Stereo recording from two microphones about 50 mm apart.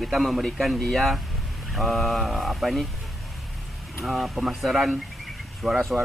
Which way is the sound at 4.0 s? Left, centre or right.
Centre.